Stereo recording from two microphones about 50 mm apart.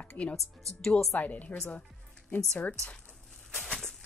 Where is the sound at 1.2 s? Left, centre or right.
Left.